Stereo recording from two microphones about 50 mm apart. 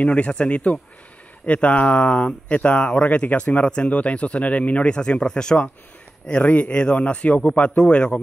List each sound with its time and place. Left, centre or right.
0.0 s speech: left
6.2 s speech: left